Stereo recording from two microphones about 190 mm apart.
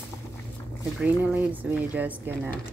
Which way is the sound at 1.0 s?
10° right (ahead or behind).